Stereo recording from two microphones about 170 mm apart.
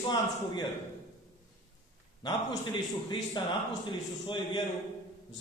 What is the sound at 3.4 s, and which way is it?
A man's voice, 25° left (ahead or behind).